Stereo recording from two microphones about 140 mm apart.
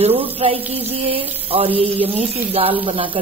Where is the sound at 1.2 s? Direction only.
15° right (ahead or behind).